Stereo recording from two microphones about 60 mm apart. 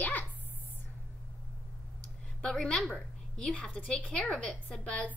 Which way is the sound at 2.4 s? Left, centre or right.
Centre.